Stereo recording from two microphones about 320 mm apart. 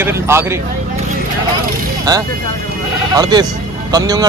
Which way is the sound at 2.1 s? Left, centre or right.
Centre.